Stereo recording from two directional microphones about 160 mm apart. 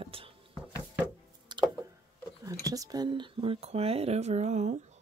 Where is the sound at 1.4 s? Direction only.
30° right (ahead or behind).